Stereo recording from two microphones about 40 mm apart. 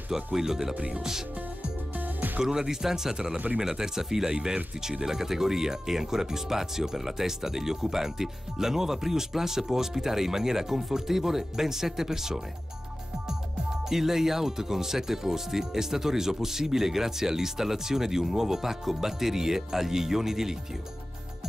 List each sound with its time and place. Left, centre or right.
0.1 s speech: centre
0.7 s speech: right
2.0 s music: right
2.4 s speech: centre
13.8 s speech: centre